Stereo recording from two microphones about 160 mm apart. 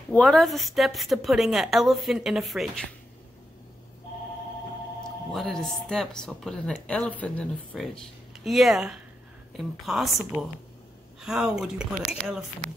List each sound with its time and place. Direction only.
0.1 s a woman's voice: 5° left (ahead or behind)
5.3 s a woman's voice: centre (ahead or behind)